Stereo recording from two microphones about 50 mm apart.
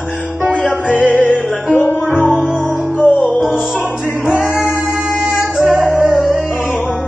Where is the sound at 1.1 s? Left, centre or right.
Left.